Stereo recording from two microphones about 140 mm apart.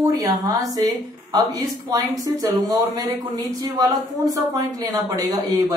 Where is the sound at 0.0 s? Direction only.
25° right (ahead or behind).